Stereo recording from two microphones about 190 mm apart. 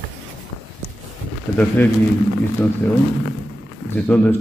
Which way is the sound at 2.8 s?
10° left (ahead or behind).